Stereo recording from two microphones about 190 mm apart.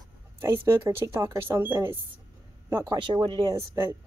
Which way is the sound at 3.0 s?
25° right (ahead or behind).